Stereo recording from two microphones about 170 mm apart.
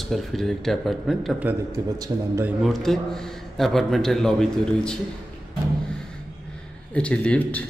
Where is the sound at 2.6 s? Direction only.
Centre (ahead or behind).